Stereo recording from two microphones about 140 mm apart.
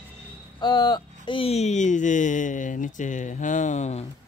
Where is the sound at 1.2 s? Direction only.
40° left (ahead or behind).